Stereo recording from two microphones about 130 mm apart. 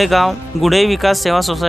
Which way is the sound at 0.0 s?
Centre (ahead or behind).